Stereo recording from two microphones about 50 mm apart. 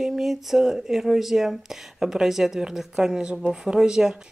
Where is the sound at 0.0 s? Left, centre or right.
Centre.